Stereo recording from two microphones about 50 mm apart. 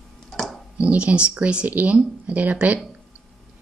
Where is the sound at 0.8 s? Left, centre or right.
Right.